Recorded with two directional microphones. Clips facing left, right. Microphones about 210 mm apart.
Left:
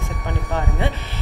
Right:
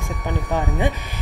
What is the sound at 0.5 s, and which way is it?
Speech, 15° right (ahead or behind).